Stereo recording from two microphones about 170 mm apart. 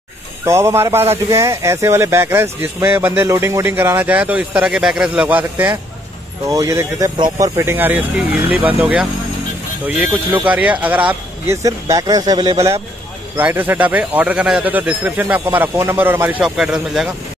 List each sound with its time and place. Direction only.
0.5 s speech: 15° right (ahead or behind)